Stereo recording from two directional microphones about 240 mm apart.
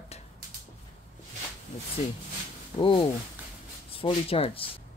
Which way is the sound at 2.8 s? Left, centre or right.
Left.